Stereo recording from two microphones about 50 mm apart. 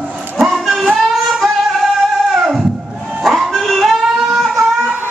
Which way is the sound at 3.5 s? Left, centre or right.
Centre.